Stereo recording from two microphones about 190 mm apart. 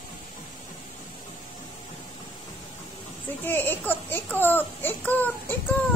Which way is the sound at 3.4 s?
10° left (ahead or behind).